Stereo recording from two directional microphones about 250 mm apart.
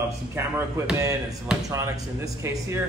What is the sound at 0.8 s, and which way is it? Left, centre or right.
Speech, centre.